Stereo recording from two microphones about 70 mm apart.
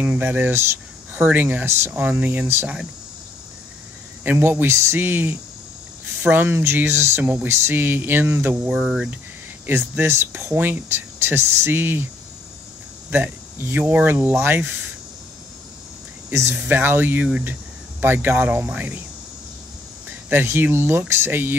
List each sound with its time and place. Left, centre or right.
0.0 s speech: right
1.7 s speech: right
2.0 s speech: right
2.4 s speech: right
4.2 s speech: right
8.6 s speech: centre
9.7 s speech: right
13.1 s speech: right
16.5 s speech: right
20.1 s speech: right